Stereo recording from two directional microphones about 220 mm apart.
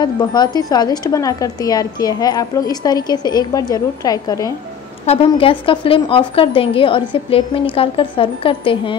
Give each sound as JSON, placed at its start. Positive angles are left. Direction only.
{"t": 0.0, "sound": "speech", "side_deg": 20}